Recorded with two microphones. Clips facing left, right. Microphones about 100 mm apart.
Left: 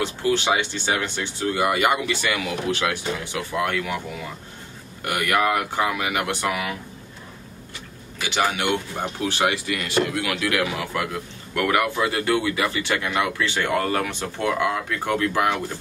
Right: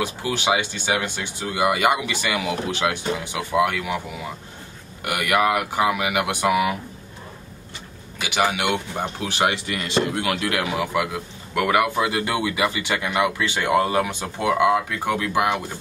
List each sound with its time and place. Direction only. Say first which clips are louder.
0.0 s speech: left 2 dB; 15° right (ahead or behind)
5.0 s speech: right 1 dB; 15° right (ahead or behind)
8.3 s speech: right 1 dB; 15° right (ahead or behind)
10.9 s speech: right 3 dB; 15° right (ahead or behind)